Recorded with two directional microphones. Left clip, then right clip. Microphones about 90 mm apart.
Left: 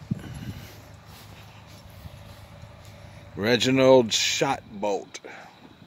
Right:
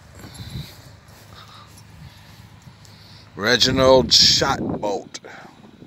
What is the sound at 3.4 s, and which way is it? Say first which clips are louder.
Speech: right 4 dB; 45° left (ahead or behind).